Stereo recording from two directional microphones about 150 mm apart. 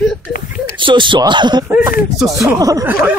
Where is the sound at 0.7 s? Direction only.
35° right (ahead or behind).